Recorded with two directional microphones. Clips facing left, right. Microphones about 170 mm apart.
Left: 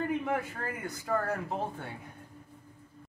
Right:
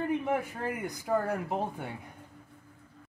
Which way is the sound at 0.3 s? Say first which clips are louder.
Right 2 dB; 15° right (ahead or behind).